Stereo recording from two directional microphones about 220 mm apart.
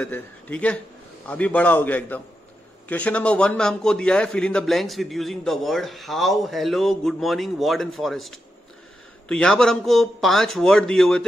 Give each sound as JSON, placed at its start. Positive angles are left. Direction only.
{"t": 0.0, "sound": "a man's voice", "side_deg": 5}